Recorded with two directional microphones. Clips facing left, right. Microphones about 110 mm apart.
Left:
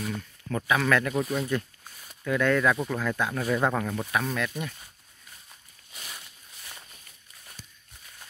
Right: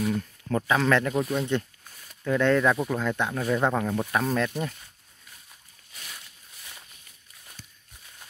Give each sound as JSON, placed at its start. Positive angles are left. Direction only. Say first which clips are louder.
{"t": 0.5, "sound": "speech", "louder": "right 2 dB", "side_deg": -25}
{"t": 1.1, "sound": "speech", "louder": "right 1 dB", "side_deg": 0}
{"t": 2.2, "sound": "speech", "louder": "right 2 dB", "side_deg": -25}
{"t": 2.7, "sound": "speech", "louder": "right 2 dB", "side_deg": -15}
{"t": 3.3, "sound": "speech", "louder": "right 1 dB", "side_deg": -5}
{"t": 3.6, "sound": "speech", "louder": "right 2 dB", "side_deg": -15}
{"t": 4.1, "sound": "speech", "louder": "right 3 dB", "side_deg": -30}
{"t": 5.9, "sound": "a sound", "louder": "left 1 dB", "side_deg": 15}